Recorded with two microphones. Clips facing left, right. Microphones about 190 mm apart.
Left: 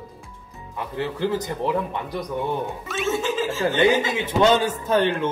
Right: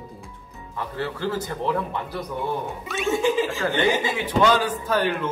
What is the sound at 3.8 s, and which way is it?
A man's voice, 20° left (ahead or behind).